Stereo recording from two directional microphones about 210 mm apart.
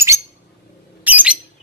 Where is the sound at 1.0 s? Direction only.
5° right (ahead or behind).